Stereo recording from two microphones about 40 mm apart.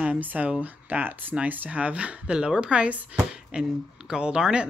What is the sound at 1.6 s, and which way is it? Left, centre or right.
Speech, right.